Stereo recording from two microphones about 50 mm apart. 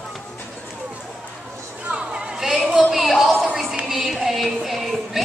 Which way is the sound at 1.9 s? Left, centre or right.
Centre.